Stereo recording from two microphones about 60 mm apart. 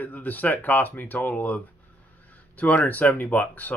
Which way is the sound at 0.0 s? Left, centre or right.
Left.